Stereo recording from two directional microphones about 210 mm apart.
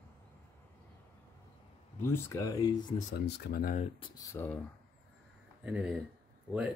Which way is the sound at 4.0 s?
15° left (ahead or behind).